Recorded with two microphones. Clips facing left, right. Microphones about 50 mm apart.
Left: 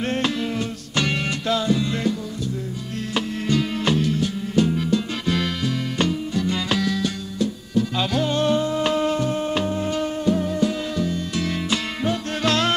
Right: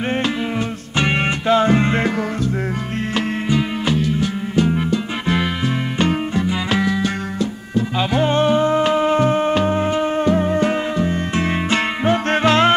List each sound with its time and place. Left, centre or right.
0.9 s music: right
1.7 s music: right
3.4 s music: centre
6.7 s music: right
9.2 s music: right